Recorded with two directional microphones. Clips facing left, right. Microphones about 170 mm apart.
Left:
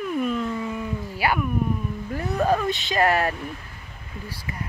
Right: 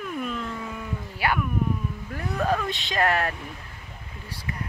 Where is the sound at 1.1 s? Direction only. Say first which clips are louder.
Left 2 dB; 5° left (ahead or behind).